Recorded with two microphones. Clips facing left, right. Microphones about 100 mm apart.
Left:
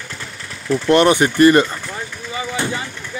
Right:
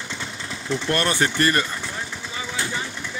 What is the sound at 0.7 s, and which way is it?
Speech, 15° left (ahead or behind).